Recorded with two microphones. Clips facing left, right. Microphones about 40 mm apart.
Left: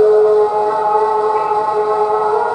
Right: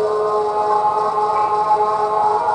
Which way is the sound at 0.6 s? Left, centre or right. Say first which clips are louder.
Left 2 dB; centre.